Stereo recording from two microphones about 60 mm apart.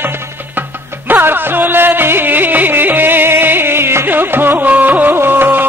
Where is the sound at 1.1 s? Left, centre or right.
Right.